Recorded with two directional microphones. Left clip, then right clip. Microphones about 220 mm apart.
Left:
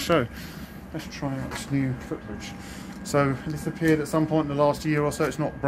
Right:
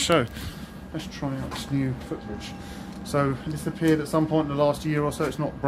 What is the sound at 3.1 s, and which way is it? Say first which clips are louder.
Speech: left 2 dB; 15° left (ahead or behind).